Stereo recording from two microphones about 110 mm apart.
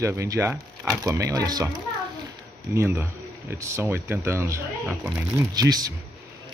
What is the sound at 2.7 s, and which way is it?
Speech, 25° right (ahead or behind).